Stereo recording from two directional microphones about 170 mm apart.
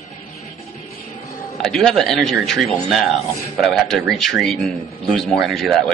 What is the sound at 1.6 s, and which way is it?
A man's voice, centre (ahead or behind).